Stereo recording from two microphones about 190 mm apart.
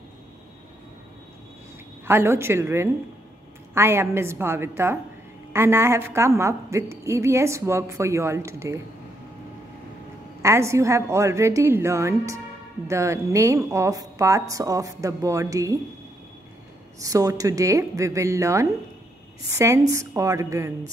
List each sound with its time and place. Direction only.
2.0 s a woman's voice: 10° right (ahead or behind)
10.4 s a woman's voice: 15° right (ahead or behind)
17.0 s a woman's voice: 20° right (ahead or behind)